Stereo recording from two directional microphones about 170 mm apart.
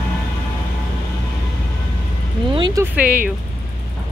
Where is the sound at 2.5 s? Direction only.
25° right (ahead or behind).